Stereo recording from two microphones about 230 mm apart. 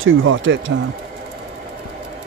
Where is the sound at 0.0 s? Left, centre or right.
Right.